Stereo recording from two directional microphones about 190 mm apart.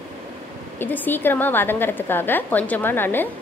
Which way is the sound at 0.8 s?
10° left (ahead or behind).